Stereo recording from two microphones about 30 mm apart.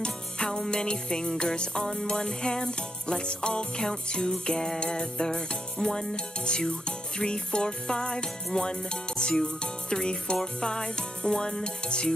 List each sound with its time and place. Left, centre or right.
0.7 s music: left
6.1 s speech: left
6.7 s music: left
9.6 s speech: left
10.3 s music: left